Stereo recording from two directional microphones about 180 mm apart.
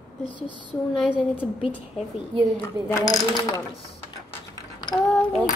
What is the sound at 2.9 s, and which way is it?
Speech, 15° left (ahead or behind).